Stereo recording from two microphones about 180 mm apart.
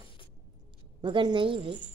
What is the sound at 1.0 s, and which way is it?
Speech, 25° right (ahead or behind).